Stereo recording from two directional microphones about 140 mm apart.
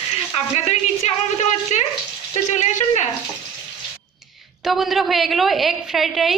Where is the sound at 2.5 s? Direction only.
55° left (ahead or behind).